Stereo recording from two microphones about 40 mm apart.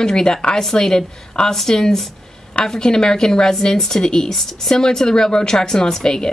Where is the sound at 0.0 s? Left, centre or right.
Centre.